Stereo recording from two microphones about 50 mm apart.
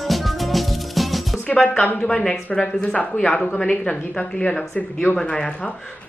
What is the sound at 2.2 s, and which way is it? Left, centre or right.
Speech, centre.